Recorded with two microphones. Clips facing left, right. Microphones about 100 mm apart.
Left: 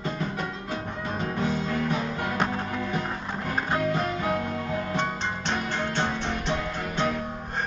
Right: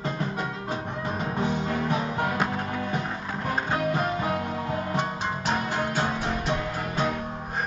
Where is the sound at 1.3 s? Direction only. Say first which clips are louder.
Even; 20° right (ahead or behind).